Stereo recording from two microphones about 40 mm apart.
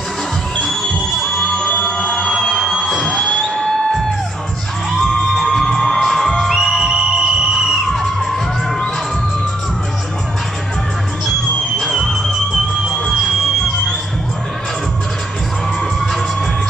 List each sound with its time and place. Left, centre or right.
1.6 s a sound: left
2.8 s music: centre
3.1 s music: centre
5.0 s music: centre
5.8 s music: centre
6.5 s music: centre
7.9 s music: centre
11.8 s music: centre